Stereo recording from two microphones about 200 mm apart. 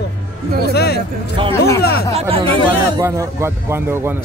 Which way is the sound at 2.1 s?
30° right (ahead or behind).